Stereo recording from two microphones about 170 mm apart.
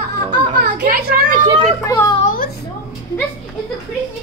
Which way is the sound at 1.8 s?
20° left (ahead or behind).